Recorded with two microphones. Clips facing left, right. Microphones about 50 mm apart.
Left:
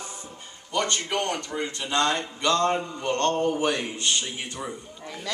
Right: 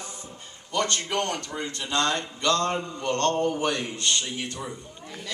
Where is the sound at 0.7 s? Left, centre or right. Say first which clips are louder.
Even; centre.